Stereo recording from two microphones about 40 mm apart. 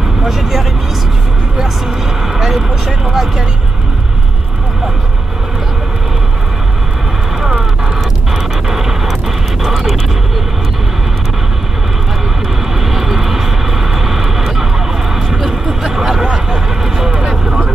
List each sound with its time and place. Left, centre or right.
0.2 s speech: centre
2.3 s vehicle: centre
3.1 s speech: centre
8.6 s a sound: centre
9.6 s music: centre
12.8 s vehicle: centre
15.1 s a sound: centre
17.2 s vehicle: centre